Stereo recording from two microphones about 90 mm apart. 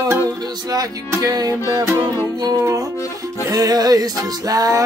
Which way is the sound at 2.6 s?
40° right (ahead or behind).